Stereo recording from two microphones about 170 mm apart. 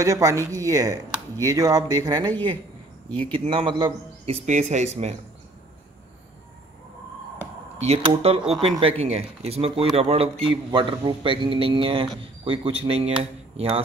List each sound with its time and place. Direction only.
0.0 s speech: 20° right (ahead or behind)
4.5 s speech: 45° right (ahead or behind)
7.8 s speech: 35° right (ahead or behind)